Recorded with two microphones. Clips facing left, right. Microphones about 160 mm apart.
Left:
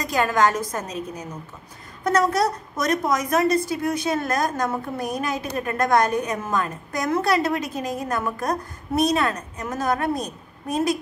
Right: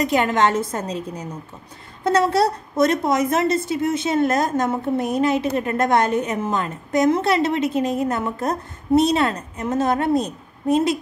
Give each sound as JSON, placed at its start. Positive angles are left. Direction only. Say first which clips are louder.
{"t": 0.0, "sound": "a woman's voice", "louder": "right 2 dB", "side_deg": -25}